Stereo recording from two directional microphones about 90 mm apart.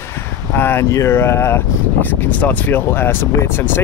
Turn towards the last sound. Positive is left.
turn(degrees=25)  # may be behind; listen again after turning